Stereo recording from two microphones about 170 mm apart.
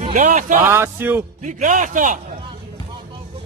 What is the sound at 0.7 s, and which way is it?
Speech, 15° right (ahead or behind).